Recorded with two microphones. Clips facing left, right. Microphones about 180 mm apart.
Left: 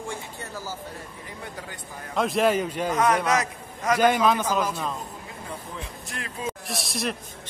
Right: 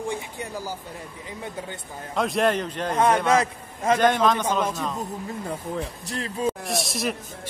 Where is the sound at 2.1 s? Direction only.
Centre (ahead or behind).